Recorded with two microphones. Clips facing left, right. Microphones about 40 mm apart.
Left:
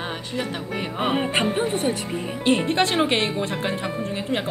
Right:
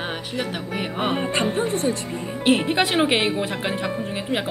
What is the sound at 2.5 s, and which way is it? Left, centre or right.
Speech, centre.